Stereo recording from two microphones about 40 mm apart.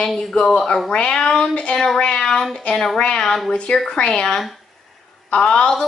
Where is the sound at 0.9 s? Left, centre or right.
Left.